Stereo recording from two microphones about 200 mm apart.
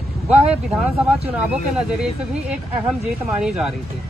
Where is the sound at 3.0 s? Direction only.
5° right (ahead or behind).